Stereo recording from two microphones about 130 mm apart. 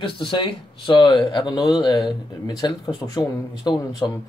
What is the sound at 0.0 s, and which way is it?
Speech, 40° left (ahead or behind).